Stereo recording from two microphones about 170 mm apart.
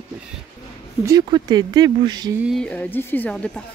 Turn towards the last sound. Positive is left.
turn(degrees=5)  # may be behind; listen again after turning